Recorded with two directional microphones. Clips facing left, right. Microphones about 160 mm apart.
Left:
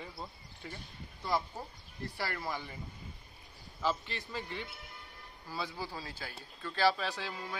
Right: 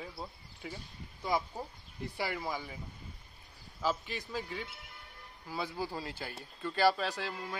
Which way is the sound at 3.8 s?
10° right (ahead or behind).